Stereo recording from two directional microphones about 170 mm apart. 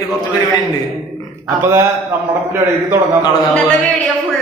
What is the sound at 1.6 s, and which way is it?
Speech, 15° right (ahead or behind).